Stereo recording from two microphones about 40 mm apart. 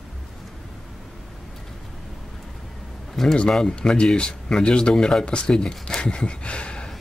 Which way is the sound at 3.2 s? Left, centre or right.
Centre.